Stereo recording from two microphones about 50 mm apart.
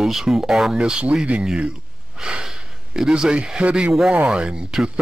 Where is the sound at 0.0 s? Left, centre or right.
Centre.